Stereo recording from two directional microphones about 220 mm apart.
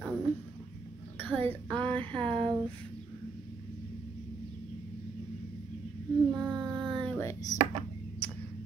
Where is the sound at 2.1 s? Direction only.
25° right (ahead or behind).